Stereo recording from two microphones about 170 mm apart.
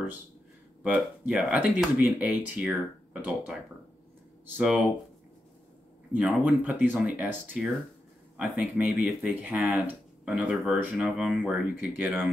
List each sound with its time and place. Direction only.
0.8 s speech: 10° right (ahead or behind)
4.6 s speech: 5° right (ahead or behind)
6.1 s speech: 10° right (ahead or behind)